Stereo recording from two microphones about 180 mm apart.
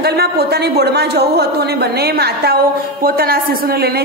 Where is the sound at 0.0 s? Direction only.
60° right (ahead or behind).